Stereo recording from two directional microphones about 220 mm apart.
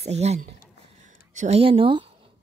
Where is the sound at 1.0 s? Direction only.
35° right (ahead or behind).